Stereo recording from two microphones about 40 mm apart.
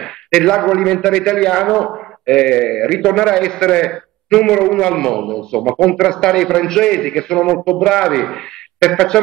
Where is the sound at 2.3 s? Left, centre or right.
Centre.